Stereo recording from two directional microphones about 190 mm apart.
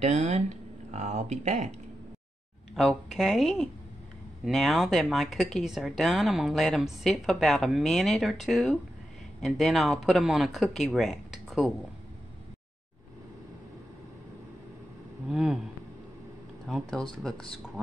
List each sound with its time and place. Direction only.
0.0 s speech: 35° right (ahead or behind)
2.7 s speech: centre (ahead or behind)
15.2 s speech: centre (ahead or behind)
16.6 s speech: centre (ahead or behind)